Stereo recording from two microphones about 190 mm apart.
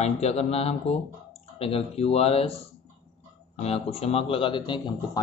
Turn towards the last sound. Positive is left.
turn(degrees=25)  # may be behind; listen again after turning